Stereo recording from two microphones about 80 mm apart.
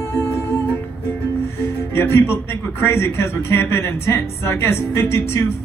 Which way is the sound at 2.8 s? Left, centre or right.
Left.